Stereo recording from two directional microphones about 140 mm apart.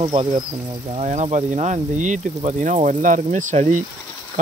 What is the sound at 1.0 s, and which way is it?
Speech, 55° right (ahead or behind).